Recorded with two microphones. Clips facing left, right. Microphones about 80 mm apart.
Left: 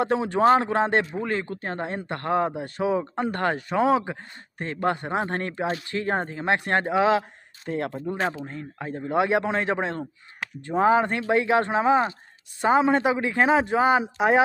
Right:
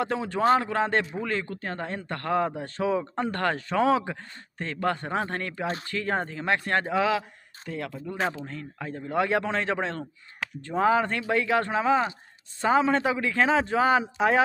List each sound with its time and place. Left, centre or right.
0.0 s speech: left
7.6 s speech: left
8.2 s speech: centre
8.5 s speech: left
10.8 s speech: left